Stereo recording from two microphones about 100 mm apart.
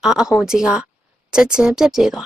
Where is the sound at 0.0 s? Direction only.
5° right (ahead or behind).